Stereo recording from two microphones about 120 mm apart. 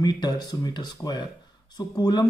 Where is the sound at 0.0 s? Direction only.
35° left (ahead or behind).